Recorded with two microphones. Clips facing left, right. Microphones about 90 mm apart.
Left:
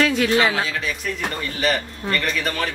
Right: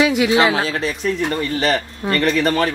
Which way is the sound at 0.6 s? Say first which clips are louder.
Right 4 dB; 35° right (ahead or behind).